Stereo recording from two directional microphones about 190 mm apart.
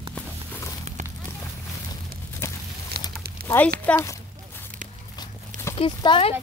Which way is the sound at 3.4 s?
55° right (ahead or behind).